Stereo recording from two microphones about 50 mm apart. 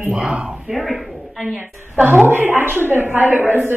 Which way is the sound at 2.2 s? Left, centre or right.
Right.